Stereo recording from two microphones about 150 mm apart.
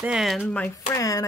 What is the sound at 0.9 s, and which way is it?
Speech, 20° left (ahead or behind).